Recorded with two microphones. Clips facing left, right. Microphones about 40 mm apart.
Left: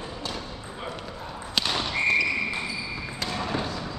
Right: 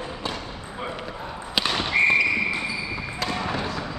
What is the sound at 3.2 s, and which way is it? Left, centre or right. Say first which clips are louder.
Basketball bounce: right 2 dB; centre.